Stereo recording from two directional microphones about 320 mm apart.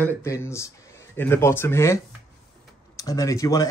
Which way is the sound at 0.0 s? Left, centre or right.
Centre.